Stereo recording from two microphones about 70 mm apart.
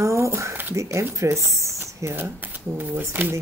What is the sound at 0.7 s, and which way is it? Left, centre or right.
Speech, right.